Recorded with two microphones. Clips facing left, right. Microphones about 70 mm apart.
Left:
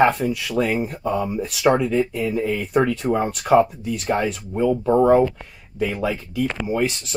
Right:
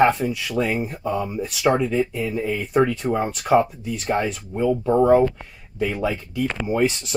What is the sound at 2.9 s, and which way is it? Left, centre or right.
Speech, centre.